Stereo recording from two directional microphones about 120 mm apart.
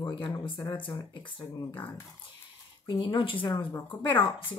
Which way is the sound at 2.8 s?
35° left (ahead or behind).